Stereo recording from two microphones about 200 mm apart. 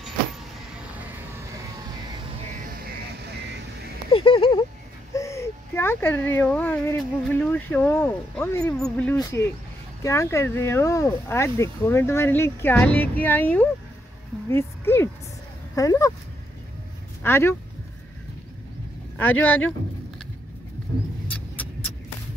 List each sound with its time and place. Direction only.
4.1 s a sound: 30° left (ahead or behind)
5.1 s speech: 15° left (ahead or behind)
17.2 s speech: 10° left (ahead or behind)
19.1 s speech: 10° left (ahead or behind)
21.3 s vehicle: 10° left (ahead or behind)